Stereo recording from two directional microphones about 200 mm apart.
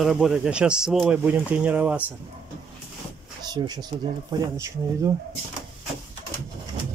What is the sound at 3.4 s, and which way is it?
Speech, 20° right (ahead or behind).